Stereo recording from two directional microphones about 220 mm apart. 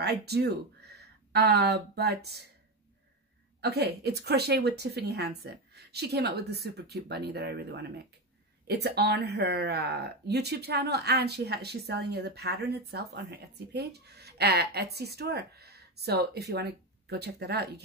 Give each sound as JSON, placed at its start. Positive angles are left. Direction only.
{"t": 0.0, "sound": "speech", "side_deg": -50}
{"t": 3.6, "sound": "speech", "side_deg": -50}